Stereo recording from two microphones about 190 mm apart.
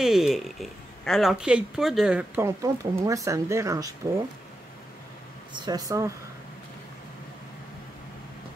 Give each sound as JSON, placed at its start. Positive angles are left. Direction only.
{"t": 0.0, "sound": "speech", "side_deg": 0}
{"t": 5.5, "sound": "speech", "side_deg": -20}